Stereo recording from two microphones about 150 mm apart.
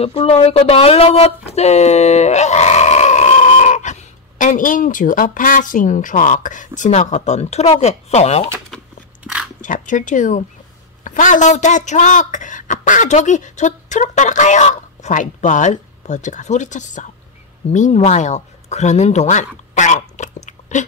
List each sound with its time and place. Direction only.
0.0 s speech: 45° left (ahead or behind)
9.2 s dog: 10° right (ahead or behind)
9.6 s speech: 60° left (ahead or behind)